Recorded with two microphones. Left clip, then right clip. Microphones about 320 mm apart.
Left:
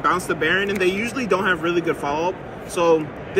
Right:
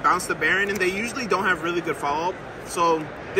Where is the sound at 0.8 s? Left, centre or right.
Right.